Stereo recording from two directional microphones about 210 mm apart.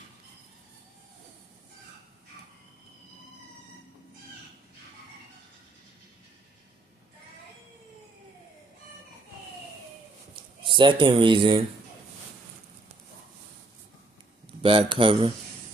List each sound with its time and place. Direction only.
10.3 s a man's voice: 25° right (ahead or behind)
14.6 s a sound: 25° right (ahead or behind)
15.0 s speech: 25° right (ahead or behind)